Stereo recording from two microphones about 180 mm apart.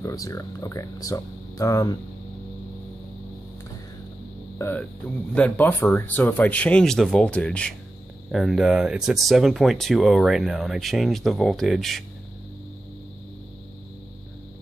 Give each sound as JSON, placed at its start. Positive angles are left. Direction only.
{"t": 0.0, "sound": "speech", "side_deg": 20}
{"t": 4.6, "sound": "speech", "side_deg": 10}